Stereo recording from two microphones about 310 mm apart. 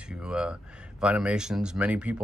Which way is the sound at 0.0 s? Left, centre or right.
Centre.